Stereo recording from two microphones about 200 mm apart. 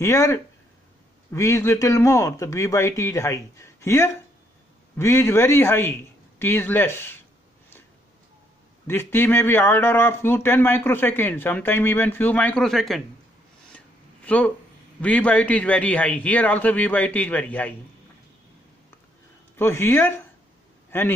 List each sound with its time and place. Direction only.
0.0 s speech: 15° left (ahead or behind)
8.8 s speech: 10° left (ahead or behind)
14.2 s speech: 5° left (ahead or behind)
19.5 s speech: 10° left (ahead or behind)